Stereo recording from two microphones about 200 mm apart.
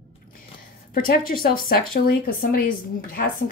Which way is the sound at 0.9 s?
45° left (ahead or behind).